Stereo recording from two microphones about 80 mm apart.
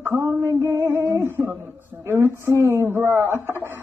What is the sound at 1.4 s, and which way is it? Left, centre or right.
Speech, centre.